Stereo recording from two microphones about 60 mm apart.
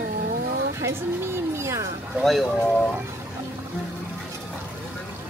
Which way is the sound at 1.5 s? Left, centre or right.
Right.